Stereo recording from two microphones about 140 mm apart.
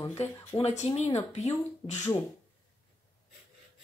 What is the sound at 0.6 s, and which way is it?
Speech, 50° left (ahead or behind).